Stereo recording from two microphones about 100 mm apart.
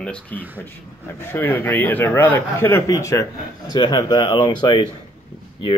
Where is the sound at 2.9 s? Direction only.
35° left (ahead or behind); by 4.8 s 50° left (ahead or behind).